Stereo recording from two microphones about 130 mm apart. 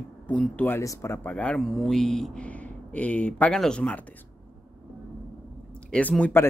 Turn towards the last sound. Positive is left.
turn(degrees=10)  # may be behind; listen again after turning